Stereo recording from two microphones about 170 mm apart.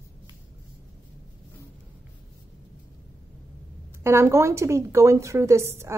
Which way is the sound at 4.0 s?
15° right (ahead or behind).